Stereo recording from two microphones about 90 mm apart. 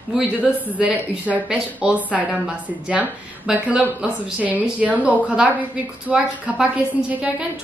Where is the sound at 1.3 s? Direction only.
15° right (ahead or behind).